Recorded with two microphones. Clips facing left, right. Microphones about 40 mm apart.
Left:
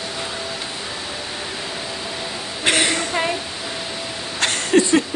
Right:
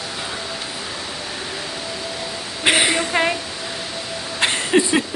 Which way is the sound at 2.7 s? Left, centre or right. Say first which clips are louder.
Right 2 dB; centre.